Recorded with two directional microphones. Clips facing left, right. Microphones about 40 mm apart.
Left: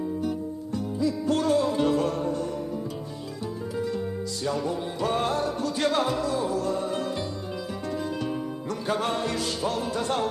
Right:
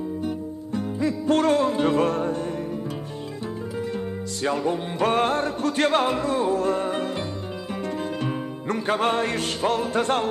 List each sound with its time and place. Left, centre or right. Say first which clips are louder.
0.7 s music: right 2 dB; right
3.9 s music: right 1 dB; right